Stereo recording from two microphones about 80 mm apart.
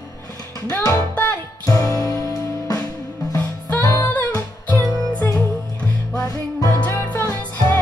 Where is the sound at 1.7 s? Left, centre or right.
Left.